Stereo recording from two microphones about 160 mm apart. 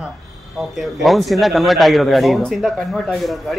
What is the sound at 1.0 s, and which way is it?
Speech, centre (ahead or behind).